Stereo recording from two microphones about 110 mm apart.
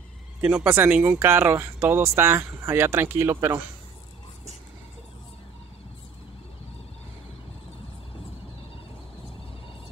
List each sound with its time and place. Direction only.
0.4 s speech: 10° right (ahead or behind)